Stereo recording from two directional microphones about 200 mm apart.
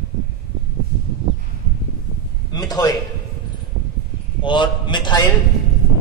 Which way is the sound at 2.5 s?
20° left (ahead or behind).